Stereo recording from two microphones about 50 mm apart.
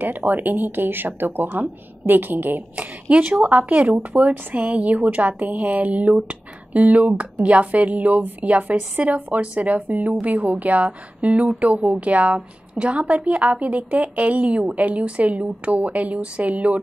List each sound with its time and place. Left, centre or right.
0.0 s speech: right
2.7 s speech: right